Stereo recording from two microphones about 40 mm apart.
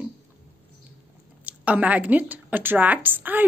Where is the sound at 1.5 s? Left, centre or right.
Right.